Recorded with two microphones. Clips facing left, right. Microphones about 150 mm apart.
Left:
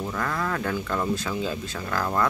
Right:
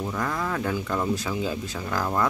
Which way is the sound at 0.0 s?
10° right (ahead or behind).